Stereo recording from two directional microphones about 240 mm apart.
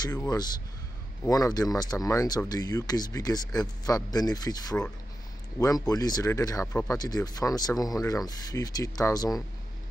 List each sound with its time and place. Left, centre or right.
0.0 s speech: centre